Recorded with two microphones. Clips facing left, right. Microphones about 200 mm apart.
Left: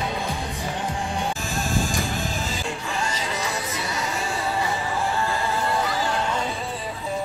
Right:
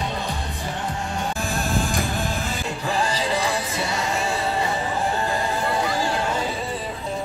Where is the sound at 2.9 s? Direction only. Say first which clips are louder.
Right 8 dB; 35° right (ahead or behind).